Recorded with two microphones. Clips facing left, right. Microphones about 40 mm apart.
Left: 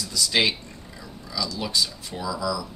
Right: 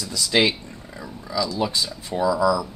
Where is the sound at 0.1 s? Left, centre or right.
Centre.